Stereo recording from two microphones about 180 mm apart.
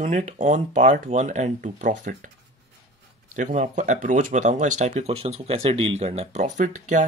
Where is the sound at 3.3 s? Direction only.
45° right (ahead or behind).